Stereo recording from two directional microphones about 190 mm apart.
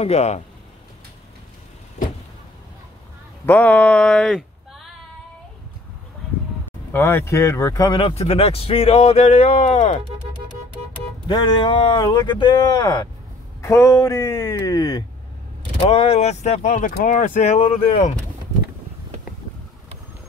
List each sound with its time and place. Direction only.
0.0 s speech: 35° left (ahead or behind)
3.4 s speech: 10° left (ahead or behind)
6.9 s speech: 10° left (ahead or behind); by 10.0 s 35° left (ahead or behind)
11.2 s speech: 25° left (ahead or behind)
15.9 s speech: 30° left (ahead or behind)